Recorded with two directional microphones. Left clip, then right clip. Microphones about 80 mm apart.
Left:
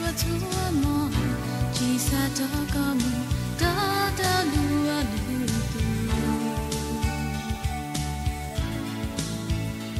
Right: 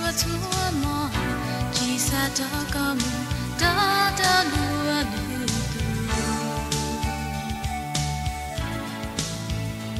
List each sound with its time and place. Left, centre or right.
0.0 s music: right